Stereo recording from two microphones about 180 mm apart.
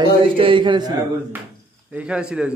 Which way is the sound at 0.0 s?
25° right (ahead or behind).